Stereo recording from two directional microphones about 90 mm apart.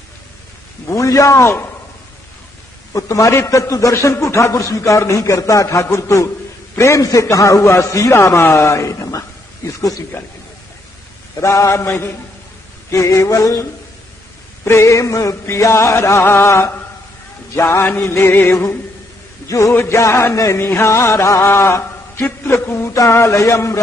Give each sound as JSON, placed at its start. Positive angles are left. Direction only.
{"t": 0.8, "sound": "a man's voice", "side_deg": 35}
{"t": 2.9, "sound": "a man's voice", "side_deg": 40}
{"t": 11.4, "sound": "a man's voice", "side_deg": 35}
{"t": 17.6, "sound": "music", "side_deg": 30}
{"t": 19.4, "sound": "a man's voice", "side_deg": 35}
{"t": 22.4, "sound": "music", "side_deg": 25}
{"t": 22.9, "sound": "a man's voice", "side_deg": 35}